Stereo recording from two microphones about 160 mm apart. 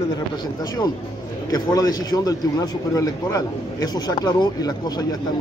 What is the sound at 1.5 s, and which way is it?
Speech, 25° left (ahead or behind).